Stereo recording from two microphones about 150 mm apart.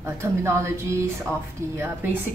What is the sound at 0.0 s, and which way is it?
A woman's voice, 20° right (ahead or behind).